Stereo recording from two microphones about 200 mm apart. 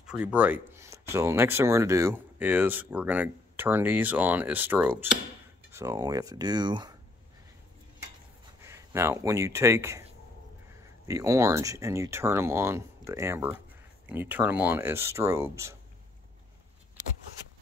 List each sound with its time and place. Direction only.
0.0 s speech: 5° right (ahead or behind); by 7.0 s 20° right (ahead or behind)
8.5 s speech: 15° right (ahead or behind)
11.1 s speech: 15° right (ahead or behind)